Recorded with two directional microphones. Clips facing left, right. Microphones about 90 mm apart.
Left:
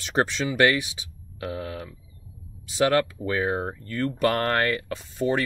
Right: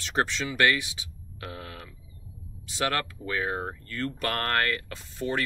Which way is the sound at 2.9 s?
15° left (ahead or behind).